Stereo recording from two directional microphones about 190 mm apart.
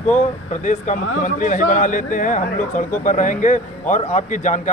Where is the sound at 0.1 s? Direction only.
40° left (ahead or behind).